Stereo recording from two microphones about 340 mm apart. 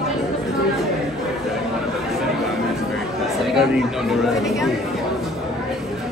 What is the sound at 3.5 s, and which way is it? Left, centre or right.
Speech, centre.